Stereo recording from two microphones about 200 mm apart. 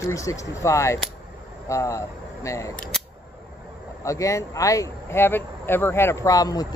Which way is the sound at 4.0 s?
15° left (ahead or behind).